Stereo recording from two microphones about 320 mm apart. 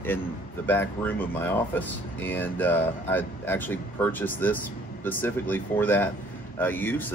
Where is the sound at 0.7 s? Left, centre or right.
Centre.